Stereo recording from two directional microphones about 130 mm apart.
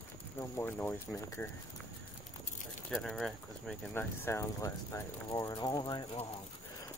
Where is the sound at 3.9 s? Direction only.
20° left (ahead or behind).